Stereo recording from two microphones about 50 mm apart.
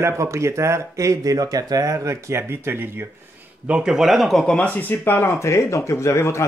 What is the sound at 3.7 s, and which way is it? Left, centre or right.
Speech, centre.